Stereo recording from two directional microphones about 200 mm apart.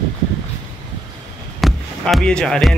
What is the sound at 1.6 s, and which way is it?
Basketball bounce, centre (ahead or behind).